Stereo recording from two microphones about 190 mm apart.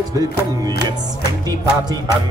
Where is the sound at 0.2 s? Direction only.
20° right (ahead or behind).